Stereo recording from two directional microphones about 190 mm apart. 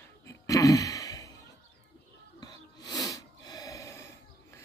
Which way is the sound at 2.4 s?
20° left (ahead or behind).